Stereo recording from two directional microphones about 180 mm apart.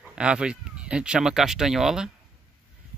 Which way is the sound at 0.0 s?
5° right (ahead or behind).